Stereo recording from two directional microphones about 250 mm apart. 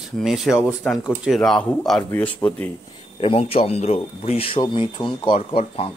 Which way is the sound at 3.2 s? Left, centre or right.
Left.